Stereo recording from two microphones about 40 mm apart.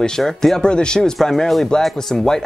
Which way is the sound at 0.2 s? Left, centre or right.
Centre.